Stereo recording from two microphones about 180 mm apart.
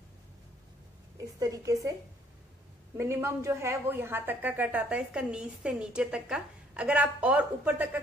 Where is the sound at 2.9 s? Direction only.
15° right (ahead or behind).